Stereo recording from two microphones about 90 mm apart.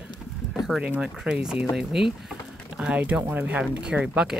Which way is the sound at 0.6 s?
5° right (ahead or behind).